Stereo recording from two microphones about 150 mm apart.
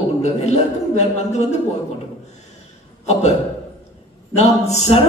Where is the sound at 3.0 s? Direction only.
45° left (ahead or behind).